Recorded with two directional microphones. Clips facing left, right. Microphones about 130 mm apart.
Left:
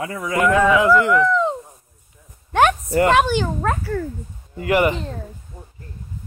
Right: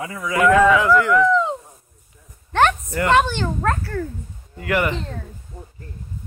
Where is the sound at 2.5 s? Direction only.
10° left (ahead or behind).